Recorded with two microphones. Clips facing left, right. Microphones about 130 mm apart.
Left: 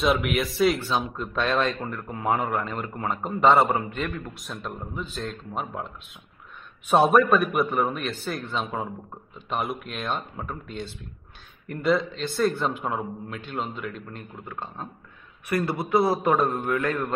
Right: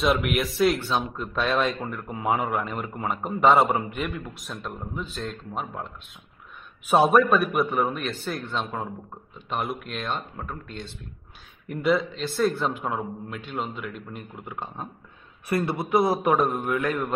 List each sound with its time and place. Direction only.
0.0 s speech: centre (ahead or behind)
4.3 s speech: centre (ahead or behind)
6.9 s speech: centre (ahead or behind)
14.3 s a man's voice: 15° right (ahead or behind)